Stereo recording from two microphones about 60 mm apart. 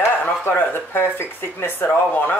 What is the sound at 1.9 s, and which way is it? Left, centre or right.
Speech, left.